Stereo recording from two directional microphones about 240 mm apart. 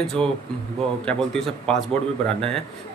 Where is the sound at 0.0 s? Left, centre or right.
Centre.